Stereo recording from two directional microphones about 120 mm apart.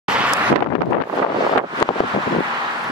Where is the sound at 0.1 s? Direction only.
5° right (ahead or behind).